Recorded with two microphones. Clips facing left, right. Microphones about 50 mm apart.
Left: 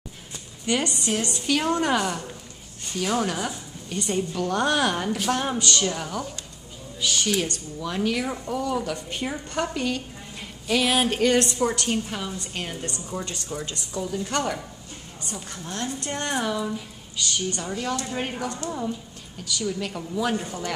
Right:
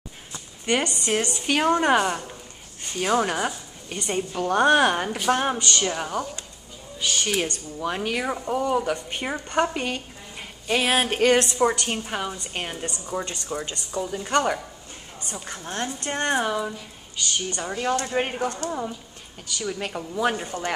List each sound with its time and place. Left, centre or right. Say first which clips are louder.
0.9 s speech: right 2 dB; right
7.3 s a woman's voice: right 1 dB; right
18.7 s speech: even; centre
19.4 s speech: left 1 dB; right